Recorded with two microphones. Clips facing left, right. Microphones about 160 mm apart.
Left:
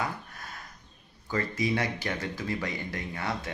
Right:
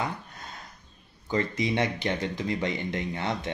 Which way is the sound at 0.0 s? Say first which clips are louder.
Right 1 dB; 20° right (ahead or behind).